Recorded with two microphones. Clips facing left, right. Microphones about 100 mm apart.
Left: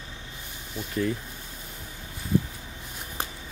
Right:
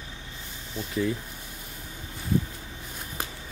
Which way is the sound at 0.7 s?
Centre (ahead or behind).